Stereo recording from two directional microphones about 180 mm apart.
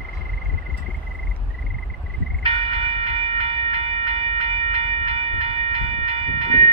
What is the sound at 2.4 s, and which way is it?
Train, 30° right (ahead or behind).